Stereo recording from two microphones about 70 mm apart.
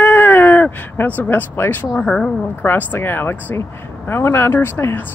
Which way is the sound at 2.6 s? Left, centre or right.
Left.